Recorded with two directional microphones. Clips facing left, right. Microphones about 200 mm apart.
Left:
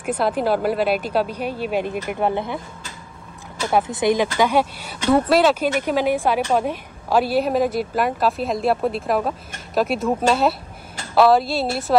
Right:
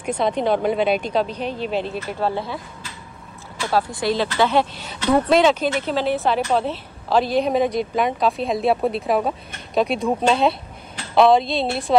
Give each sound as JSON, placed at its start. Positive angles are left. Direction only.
{"t": 0.2, "sound": "speech", "side_deg": 5}
{"t": 3.6, "sound": "a woman's voice", "side_deg": 20}